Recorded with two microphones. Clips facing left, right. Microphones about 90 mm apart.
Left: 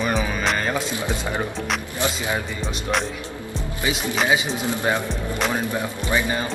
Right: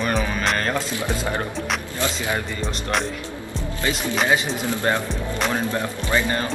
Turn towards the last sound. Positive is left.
turn(degrees=15)  # may be behind; listen again after turning